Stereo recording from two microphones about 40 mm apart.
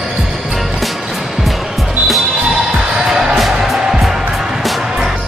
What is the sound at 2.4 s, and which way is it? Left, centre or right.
Music, centre.